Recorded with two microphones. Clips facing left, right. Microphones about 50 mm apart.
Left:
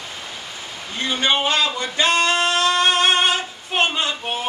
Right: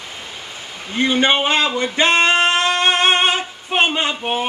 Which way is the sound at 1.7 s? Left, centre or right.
Right.